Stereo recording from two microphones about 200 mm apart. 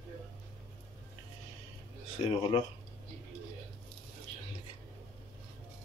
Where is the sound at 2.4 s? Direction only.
25° left (ahead or behind).